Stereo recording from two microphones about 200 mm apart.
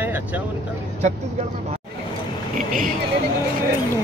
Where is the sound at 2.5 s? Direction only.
40° right (ahead or behind).